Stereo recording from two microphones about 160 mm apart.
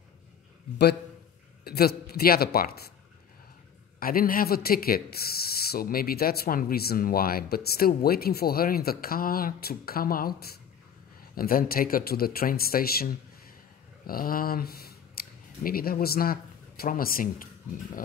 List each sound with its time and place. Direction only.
1.6 s speech: 80° left
4.0 s speech: 65° left (ahead or behind)